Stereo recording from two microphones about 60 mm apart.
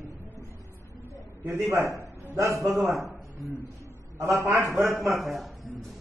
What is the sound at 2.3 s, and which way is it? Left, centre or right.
Speech, right.